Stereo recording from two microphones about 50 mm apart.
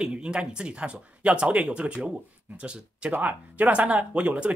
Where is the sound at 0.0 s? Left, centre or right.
Centre.